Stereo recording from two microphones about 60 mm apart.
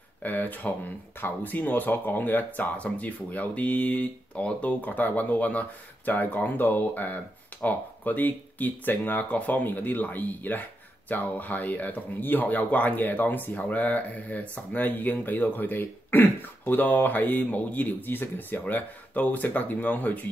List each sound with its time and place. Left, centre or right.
0.2 s speech: left